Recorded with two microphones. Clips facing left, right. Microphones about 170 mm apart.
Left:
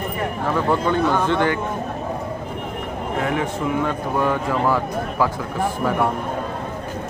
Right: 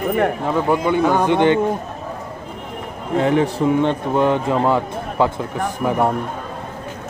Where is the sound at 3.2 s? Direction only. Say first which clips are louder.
Right 7 dB; 30° right (ahead or behind).